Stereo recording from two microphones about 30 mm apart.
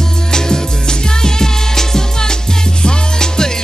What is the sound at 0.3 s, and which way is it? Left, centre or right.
Music, left.